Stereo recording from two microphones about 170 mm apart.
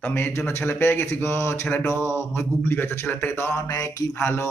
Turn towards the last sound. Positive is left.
turn(degrees=15)  # may be behind; listen again after turning